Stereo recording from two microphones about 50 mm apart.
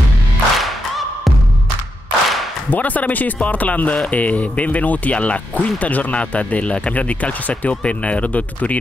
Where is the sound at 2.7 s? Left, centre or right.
Left.